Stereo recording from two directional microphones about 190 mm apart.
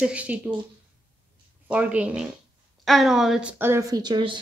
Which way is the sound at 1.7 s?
5° right (ahead or behind).